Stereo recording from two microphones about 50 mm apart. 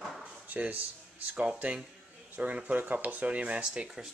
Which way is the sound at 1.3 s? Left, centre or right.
Right.